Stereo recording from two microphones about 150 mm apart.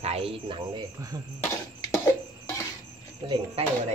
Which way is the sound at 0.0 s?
40° right (ahead or behind).